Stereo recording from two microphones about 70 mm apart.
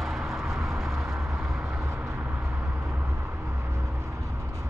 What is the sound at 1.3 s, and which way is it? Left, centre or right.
Vehicle, right.